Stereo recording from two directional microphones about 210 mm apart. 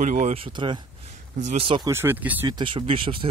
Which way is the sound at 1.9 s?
10° right (ahead or behind).